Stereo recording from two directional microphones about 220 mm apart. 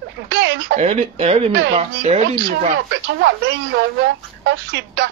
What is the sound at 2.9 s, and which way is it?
A woman's voice, 55° right (ahead or behind).